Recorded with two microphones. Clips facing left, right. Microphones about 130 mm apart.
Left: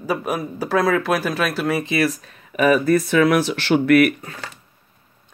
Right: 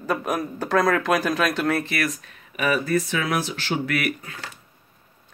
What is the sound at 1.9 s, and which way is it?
Speech, 35° left (ahead or behind).